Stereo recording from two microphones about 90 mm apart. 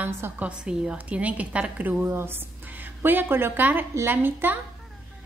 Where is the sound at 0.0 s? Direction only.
20° right (ahead or behind).